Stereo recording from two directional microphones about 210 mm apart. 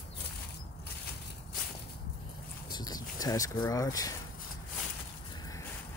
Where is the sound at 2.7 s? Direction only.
20° left (ahead or behind).